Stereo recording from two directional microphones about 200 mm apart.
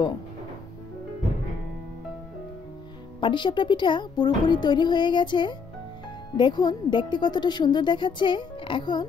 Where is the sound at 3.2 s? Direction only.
25° left (ahead or behind).